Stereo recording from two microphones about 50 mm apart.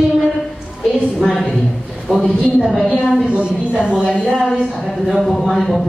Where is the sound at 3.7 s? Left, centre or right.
Centre.